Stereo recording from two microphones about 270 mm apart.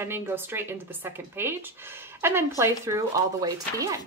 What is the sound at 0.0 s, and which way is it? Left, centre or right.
A woman's voice, centre.